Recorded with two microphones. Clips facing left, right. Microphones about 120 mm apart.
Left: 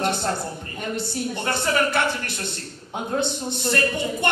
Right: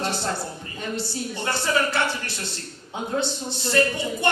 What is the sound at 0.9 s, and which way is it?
Music, 55° left (ahead or behind).